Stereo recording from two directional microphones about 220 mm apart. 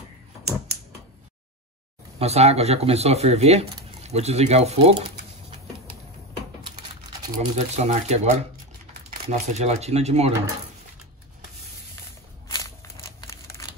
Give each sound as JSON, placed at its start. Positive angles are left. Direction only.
{"t": 2.1, "sound": "speech", "side_deg": -30}
{"t": 7.3, "sound": "speech", "side_deg": -30}
{"t": 12.4, "sound": "a sound", "side_deg": 15}